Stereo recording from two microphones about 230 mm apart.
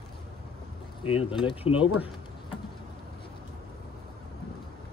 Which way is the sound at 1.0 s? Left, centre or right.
Left.